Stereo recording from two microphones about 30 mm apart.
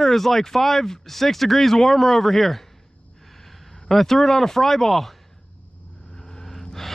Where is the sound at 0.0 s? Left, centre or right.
Centre.